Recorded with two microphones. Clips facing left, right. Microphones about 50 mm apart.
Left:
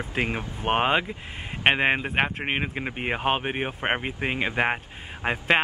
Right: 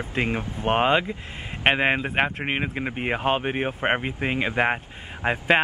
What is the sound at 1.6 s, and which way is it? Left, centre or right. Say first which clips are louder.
Speech: right 1 dB; centre.